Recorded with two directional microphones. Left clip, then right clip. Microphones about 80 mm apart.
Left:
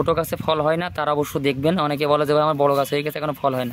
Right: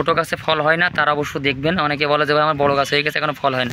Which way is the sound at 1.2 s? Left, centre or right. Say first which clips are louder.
Right 1 dB; left.